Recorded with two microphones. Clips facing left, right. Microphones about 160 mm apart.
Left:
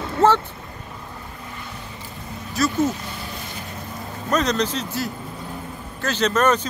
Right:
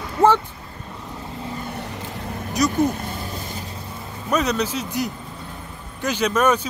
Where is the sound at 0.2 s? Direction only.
15° right (ahead or behind).